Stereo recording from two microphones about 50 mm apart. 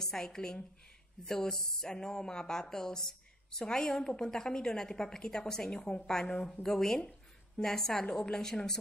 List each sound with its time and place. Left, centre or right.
0.0 s speech: centre
7.0 s a sound: left
7.6 s speech: centre